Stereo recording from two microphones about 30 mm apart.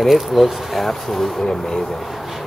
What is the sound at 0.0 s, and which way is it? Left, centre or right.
Speech, centre.